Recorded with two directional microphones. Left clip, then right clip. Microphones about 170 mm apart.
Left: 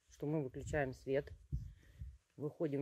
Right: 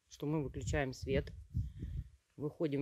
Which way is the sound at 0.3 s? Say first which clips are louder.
Right 2 dB; 45° right (ahead or behind).